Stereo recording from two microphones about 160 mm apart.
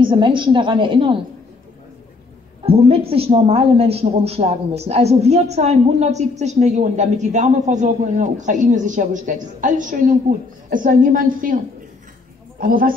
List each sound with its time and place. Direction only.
0.0 s a woman's voice: 30° right (ahead or behind)
2.6 s a woman's voice: 35° right (ahead or behind); by 12.9 s 65° right (ahead or behind)